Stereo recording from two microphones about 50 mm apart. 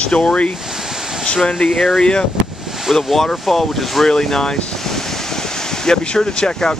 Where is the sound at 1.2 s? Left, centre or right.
Centre.